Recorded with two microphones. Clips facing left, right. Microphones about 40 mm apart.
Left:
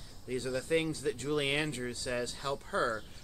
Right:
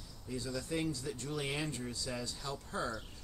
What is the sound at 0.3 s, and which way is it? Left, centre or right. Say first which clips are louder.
Speech: left 7 dB; left.